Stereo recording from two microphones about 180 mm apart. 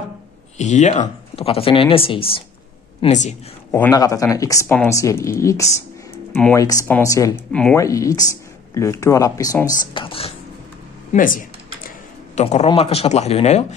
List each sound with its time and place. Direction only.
0.6 s speech: 40° left (ahead or behind)
3.7 s speech: 15° left (ahead or behind)
11.1 s speech: 50° left (ahead or behind)
12.4 s speech: 35° left (ahead or behind)